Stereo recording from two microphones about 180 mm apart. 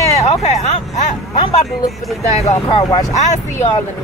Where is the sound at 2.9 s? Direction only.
20° left (ahead or behind).